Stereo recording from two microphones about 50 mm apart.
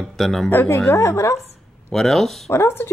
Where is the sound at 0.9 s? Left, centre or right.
Left.